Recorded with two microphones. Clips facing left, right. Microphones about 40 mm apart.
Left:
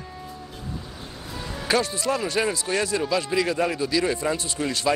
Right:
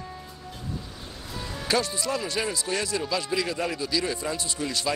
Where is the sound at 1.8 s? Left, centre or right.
Left.